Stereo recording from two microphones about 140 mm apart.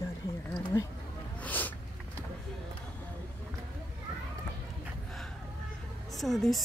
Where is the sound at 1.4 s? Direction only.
10° left (ahead or behind).